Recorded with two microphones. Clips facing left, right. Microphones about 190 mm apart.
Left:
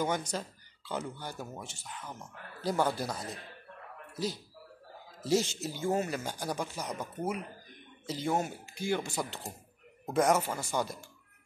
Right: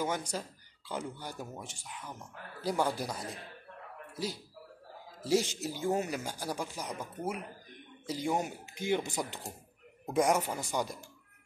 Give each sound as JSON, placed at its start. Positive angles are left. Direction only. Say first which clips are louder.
{"t": 0.0, "sound": "speech", "louder": "left 2 dB", "side_deg": -10}